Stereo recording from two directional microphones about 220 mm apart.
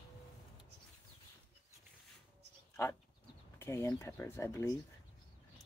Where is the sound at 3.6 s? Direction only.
15° left (ahead or behind).